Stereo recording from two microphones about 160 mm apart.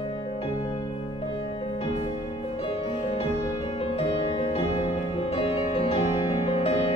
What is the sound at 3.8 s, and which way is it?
Music, 35° left (ahead or behind).